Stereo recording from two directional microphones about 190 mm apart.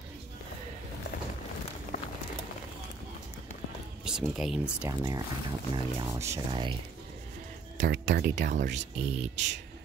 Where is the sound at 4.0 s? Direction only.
5° right (ahead or behind).